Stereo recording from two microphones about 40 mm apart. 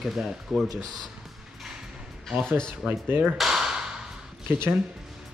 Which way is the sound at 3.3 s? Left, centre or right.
Centre.